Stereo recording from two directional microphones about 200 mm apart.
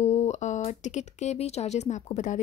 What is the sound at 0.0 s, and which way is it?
Speech, 35° left (ahead or behind).